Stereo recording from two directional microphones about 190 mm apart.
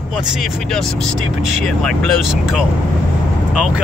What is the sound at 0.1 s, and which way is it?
Speech, 5° right (ahead or behind).